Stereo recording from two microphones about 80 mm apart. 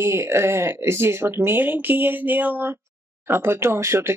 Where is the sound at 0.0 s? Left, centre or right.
Right.